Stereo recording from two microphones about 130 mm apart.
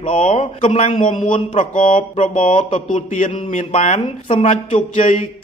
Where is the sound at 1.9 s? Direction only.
80° left.